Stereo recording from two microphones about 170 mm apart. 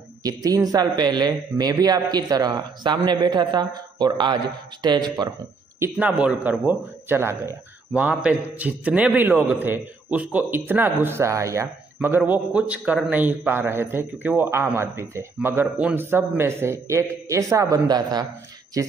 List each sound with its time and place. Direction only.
0.2 s a man's voice: 20° right (ahead or behind)
5.8 s a man's voice: 10° right (ahead or behind)